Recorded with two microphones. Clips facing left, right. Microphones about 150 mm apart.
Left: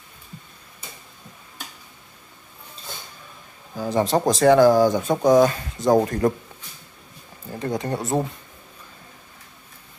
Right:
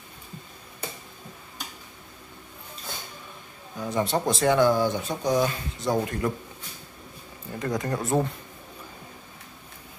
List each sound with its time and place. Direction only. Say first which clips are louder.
3.7 s speech: left 5 dB; 35° left (ahead or behind)
7.5 s speech: left 2 dB; 30° left (ahead or behind)